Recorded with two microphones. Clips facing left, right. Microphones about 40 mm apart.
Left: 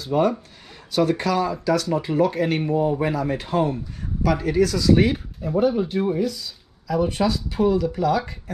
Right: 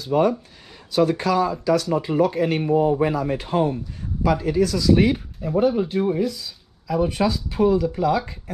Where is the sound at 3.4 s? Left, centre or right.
Right.